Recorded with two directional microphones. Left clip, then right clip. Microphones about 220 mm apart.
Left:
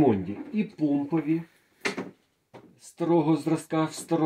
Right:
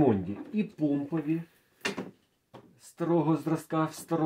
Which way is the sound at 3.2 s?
25° right (ahead or behind).